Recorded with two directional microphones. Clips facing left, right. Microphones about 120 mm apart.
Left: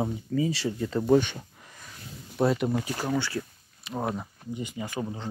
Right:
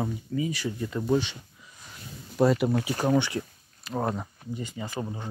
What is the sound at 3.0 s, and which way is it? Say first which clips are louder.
Speech: right 4 dB; 20° right (ahead or behind).